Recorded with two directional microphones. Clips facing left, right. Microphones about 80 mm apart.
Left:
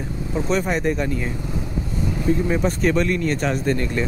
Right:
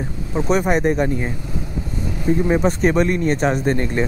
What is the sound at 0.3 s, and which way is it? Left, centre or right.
Speech, centre.